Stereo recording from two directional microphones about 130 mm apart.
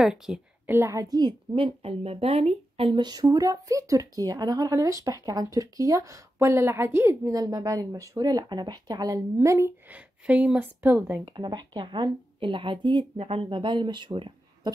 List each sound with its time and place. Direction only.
0.0 s a woman's voice: 5° right (ahead or behind)
0.7 s speech: 20° right (ahead or behind)
1.1 s speech: 40° right (ahead or behind); by 9.7 s 25° right (ahead or behind)
9.8 s speech: 10° right (ahead or behind)
11.3 s a woman's voice: 35° right (ahead or behind)